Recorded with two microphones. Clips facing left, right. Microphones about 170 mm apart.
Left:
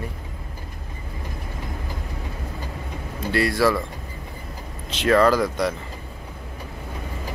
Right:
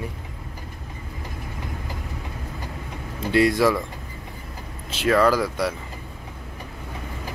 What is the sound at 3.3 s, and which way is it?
Speech, 20° right (ahead or behind).